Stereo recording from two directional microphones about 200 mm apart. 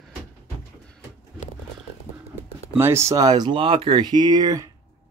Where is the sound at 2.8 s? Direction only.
10° right (ahead or behind).